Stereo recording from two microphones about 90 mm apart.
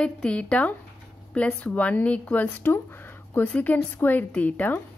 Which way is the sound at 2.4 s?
25° left (ahead or behind).